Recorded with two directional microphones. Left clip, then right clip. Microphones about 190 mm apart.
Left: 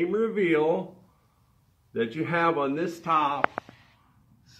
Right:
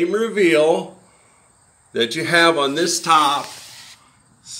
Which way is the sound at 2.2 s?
35° right (ahead or behind).